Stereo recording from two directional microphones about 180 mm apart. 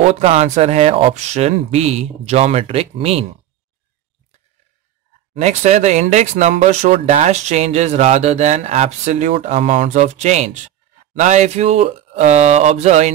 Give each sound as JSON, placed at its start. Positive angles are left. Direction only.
{"t": 0.0, "sound": "speech", "side_deg": -35}
{"t": 5.4, "sound": "speech", "side_deg": -40}